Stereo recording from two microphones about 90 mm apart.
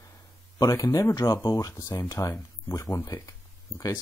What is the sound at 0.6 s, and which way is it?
Speech, 40° left (ahead or behind).